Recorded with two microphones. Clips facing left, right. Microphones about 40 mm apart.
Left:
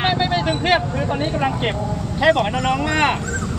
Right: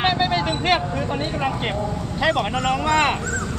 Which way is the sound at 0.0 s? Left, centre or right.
Centre.